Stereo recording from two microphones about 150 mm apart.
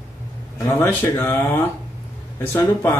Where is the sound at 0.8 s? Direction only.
15° left (ahead or behind).